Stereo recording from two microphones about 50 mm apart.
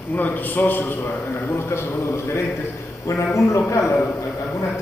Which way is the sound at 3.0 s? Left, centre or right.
Left.